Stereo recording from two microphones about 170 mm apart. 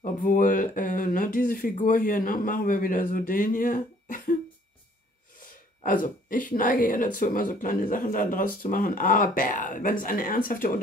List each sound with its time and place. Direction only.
0.0 s speech: 50° left (ahead or behind)
5.9 s speech: 50° left (ahead or behind)